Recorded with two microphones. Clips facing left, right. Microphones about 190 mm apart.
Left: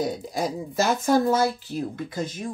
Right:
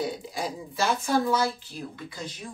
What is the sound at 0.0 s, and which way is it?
Speech, 40° left (ahead or behind).